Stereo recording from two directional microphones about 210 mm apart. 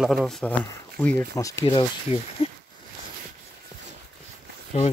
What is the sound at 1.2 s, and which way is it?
Speech, 15° left (ahead or behind).